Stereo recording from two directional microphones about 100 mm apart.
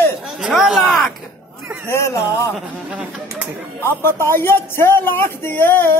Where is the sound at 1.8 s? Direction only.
30° left (ahead or behind).